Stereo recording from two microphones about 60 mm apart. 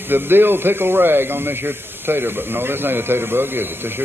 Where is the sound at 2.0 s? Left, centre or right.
Right.